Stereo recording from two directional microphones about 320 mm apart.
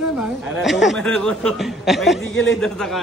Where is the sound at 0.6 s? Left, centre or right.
Centre.